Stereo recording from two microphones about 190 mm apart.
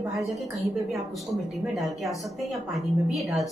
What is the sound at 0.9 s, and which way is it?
A woman's voice, centre (ahead or behind).